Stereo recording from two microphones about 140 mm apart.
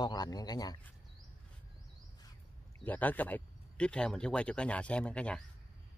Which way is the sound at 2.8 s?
10° left (ahead or behind).